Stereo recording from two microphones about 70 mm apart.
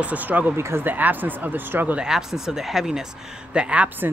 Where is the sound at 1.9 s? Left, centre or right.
Centre.